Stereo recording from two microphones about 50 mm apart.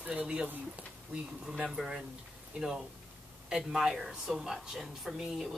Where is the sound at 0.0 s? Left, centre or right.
Right.